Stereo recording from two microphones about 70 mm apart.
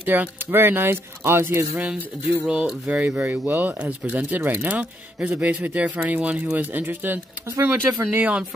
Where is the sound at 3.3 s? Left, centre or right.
Right.